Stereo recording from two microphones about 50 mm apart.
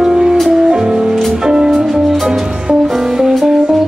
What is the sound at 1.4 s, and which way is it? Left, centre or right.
Music, centre.